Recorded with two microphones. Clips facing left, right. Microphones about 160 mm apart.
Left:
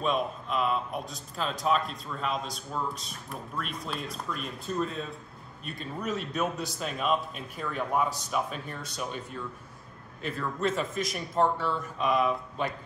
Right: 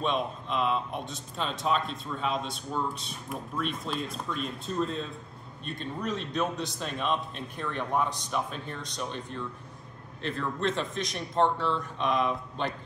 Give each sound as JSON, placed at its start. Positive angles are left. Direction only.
{"t": 0.0, "sound": "a man's voice", "side_deg": 5}